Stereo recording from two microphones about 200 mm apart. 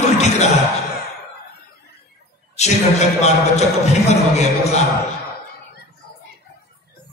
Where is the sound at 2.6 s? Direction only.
35° left (ahead or behind).